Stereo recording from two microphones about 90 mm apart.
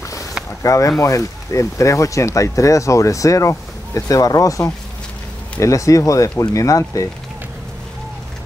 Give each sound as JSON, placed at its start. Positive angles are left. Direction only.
{"t": 0.6, "sound": "speech", "side_deg": 40}